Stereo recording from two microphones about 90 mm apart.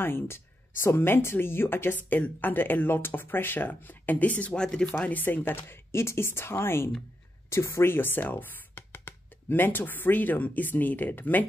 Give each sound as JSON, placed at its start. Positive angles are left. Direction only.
{"t": 0.0, "sound": "speech", "side_deg": 25}